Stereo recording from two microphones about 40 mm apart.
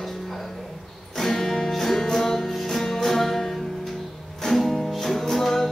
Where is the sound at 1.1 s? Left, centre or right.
Centre.